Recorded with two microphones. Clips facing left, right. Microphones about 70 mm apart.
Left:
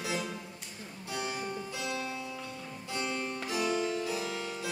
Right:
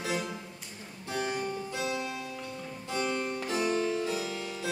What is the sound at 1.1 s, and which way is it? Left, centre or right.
Music, right.